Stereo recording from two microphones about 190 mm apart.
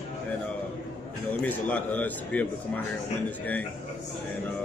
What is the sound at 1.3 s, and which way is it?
A man's voice, 10° left (ahead or behind).